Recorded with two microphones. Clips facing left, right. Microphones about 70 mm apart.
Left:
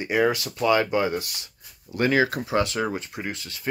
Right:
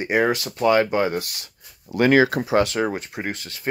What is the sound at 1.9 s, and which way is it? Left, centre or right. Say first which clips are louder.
Speech: right 5 dB; right.